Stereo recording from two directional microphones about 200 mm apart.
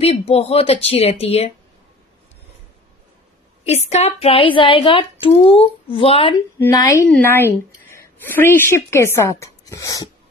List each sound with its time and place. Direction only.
0.0 s speech: 30° left (ahead or behind)
3.6 s speech: 30° left (ahead or behind)
6.6 s speech: 15° left (ahead or behind)